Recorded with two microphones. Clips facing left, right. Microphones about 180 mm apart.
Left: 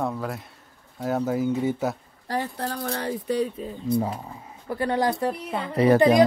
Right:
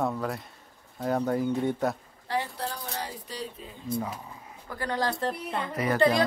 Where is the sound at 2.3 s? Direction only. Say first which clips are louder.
Left 2 dB; 45° left (ahead or behind).